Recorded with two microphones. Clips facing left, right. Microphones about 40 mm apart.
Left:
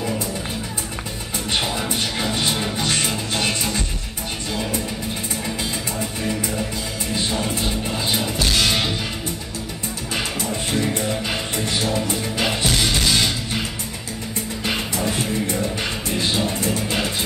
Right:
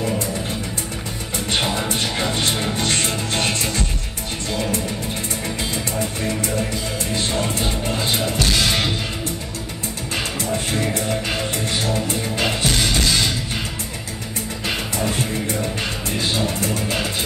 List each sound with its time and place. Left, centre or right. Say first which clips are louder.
1.6 s music: right 3 dB; centre
2.8 s music: right 1 dB; centre
7.6 s music: right 1 dB; centre
12.4 s music: even; centre